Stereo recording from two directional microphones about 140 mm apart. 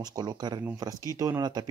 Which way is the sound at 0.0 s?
30° right (ahead or behind).